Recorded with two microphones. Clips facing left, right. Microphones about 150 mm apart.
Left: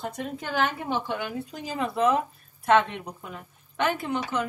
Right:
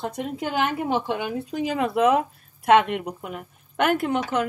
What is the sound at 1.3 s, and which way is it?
Speech, 75° right (ahead or behind).